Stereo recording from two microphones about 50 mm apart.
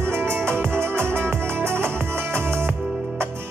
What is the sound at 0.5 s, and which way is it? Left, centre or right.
Music, right.